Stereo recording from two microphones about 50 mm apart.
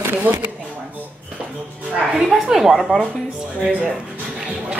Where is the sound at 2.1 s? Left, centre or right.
Centre.